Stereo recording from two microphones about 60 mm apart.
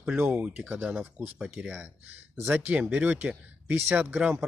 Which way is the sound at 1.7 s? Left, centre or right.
Right.